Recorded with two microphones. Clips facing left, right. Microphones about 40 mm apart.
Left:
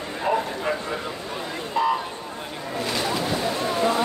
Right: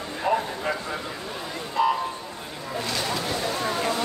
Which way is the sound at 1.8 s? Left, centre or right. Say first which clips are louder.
Even; left.